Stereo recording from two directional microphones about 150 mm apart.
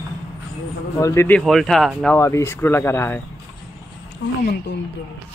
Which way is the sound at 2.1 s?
20° left (ahead or behind).